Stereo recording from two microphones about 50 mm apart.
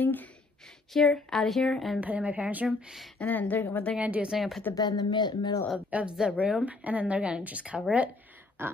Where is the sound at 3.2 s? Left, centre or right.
Left.